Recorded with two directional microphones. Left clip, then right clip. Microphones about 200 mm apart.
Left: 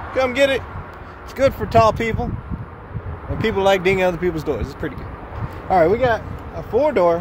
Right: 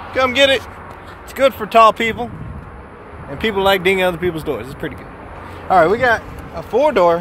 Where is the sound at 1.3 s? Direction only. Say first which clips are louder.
Right 3 dB; 10° right (ahead or behind).